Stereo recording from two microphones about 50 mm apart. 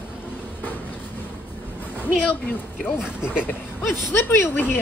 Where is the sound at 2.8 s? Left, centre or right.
Centre.